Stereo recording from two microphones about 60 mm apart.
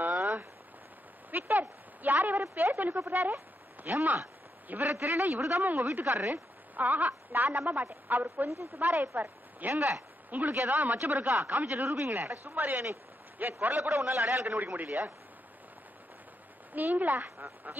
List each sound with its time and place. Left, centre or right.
0.0 s a sound: right
2.5 s speech: right
4.9 s speech: right
5.6 s a woman's voice: right
8.1 s a woman's voice: right
8.5 s speech: right
8.9 s speech: right
9.6 s a woman's voice: right
14.4 s a woman's voice: right
14.9 s speech: right
16.7 s a woman's voice: right